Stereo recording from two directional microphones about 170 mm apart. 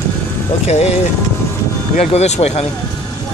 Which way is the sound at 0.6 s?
40° left (ahead or behind).